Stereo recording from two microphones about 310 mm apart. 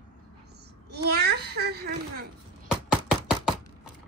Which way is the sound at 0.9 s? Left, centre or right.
Right.